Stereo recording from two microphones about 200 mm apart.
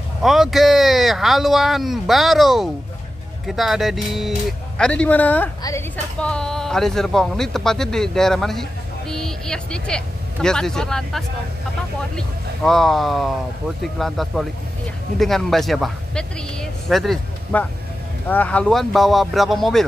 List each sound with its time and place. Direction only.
0.2 s a woman's voice: centre (ahead or behind); by 5.9 s 15° left (ahead or behind)
6.1 s speech: 5° left (ahead or behind)